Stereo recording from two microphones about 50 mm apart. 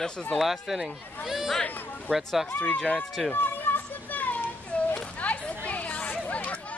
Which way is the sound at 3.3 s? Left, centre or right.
Left.